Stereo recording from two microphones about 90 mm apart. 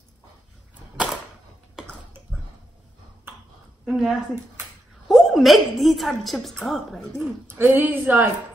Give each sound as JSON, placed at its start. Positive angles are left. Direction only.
{"t": 3.8, "sound": "a woman's voice", "side_deg": -5}
{"t": 7.4, "sound": "a woman's voice", "side_deg": -20}